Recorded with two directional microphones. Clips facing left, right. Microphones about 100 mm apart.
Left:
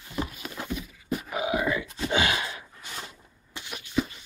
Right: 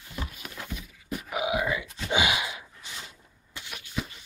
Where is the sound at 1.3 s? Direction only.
15° right (ahead or behind).